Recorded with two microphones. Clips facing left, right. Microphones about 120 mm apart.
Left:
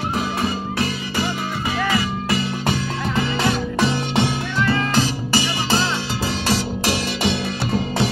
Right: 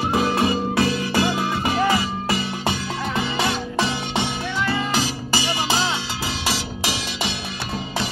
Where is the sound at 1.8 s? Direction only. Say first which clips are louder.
Left 1 dB; 30° right (ahead or behind).